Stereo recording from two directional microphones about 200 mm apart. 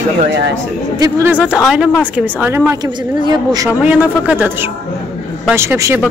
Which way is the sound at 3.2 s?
20° right (ahead or behind).